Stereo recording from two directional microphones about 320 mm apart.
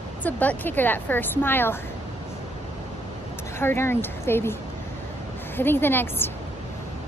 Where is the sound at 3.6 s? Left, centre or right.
Centre.